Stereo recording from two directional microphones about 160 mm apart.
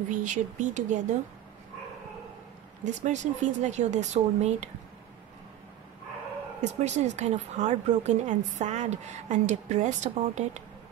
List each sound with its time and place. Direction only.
0.1 s a woman's voice: 50° right (ahead or behind)
2.8 s a woman's voice: 50° right (ahead or behind)
6.6 s a woman's voice: 45° right (ahead or behind)